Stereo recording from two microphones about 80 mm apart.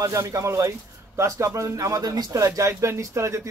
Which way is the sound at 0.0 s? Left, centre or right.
Right.